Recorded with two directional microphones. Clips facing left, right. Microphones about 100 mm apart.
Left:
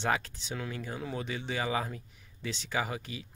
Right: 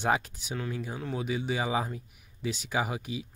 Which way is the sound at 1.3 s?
10° right (ahead or behind).